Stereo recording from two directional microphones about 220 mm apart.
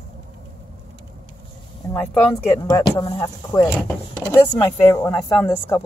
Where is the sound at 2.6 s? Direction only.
15° left (ahead or behind).